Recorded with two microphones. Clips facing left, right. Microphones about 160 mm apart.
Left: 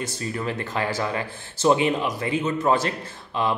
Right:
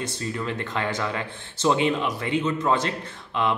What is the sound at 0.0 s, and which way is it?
Speech, 10° left (ahead or behind).